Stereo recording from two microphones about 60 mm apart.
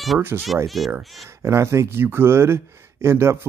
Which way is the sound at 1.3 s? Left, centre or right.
Right.